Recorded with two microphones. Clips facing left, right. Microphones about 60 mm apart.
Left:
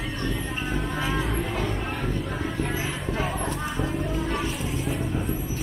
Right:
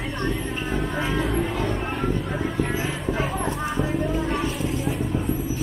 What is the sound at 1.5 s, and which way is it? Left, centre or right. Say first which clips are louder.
Music: right 3 dB; centre.